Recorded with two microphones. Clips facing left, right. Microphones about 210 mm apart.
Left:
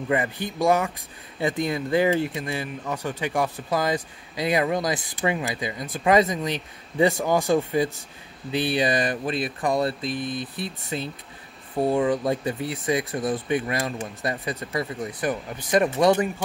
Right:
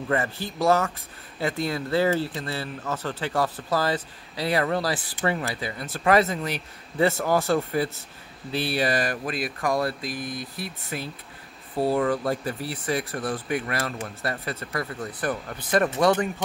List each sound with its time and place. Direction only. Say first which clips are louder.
0.1 s speech: left 2 dB; 15° left (ahead or behind)